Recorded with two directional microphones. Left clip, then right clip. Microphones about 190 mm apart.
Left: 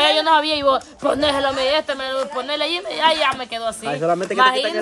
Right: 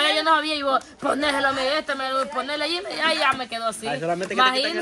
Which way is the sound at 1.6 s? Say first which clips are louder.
Left 5 dB; 50° left (ahead or behind).